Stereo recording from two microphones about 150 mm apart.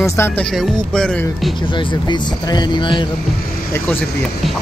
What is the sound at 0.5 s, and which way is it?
Speech, 5° left (ahead or behind).